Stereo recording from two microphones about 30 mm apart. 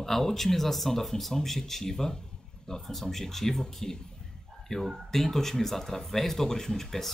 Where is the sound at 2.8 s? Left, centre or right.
Centre.